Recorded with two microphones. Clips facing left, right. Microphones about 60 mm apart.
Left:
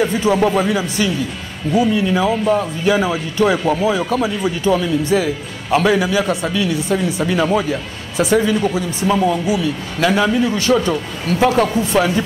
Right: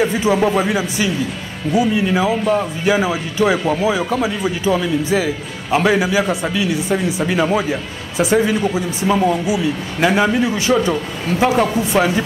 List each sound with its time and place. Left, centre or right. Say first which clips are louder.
0.0 s speech: even; centre
0.7 s speech: left 1 dB; centre
9.5 s a man's voice: even; centre